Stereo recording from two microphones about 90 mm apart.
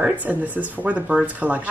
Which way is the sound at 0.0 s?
15° right (ahead or behind).